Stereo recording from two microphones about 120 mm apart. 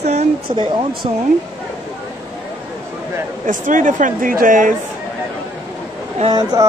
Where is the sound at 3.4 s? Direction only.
90° right.